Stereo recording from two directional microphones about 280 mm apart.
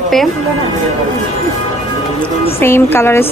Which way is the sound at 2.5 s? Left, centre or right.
Centre.